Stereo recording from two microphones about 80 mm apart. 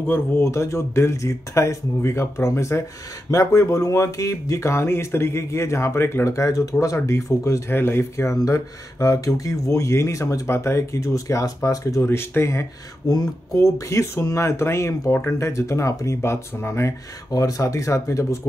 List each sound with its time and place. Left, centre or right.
0.0 s speech: left
0.5 s speech: left
7.7 s speech: left
13.1 s speech: left
17.3 s speech: left